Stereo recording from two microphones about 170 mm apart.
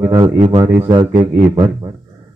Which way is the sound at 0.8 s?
25° right (ahead or behind).